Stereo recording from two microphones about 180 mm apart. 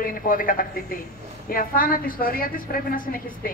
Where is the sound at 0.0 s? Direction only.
50° left (ahead or behind).